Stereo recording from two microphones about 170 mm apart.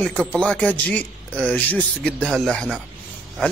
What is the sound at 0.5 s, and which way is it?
Speech, 10° left (ahead or behind).